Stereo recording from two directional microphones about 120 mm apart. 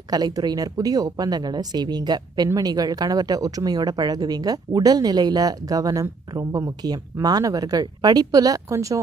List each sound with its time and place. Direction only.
0.1 s speech: 35° right (ahead or behind)